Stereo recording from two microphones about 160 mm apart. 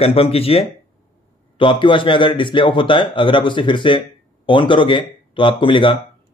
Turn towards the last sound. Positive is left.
turn(degrees=30)  # may be behind; listen again after turning